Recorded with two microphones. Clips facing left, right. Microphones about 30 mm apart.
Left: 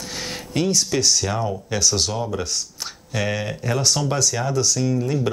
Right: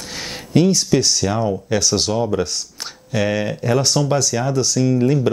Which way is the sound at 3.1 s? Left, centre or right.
Centre.